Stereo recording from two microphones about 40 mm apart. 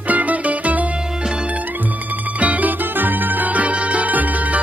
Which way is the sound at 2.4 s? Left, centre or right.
Right.